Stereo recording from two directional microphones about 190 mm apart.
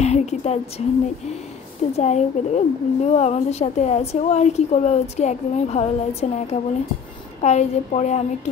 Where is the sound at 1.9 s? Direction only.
35° left (ahead or behind).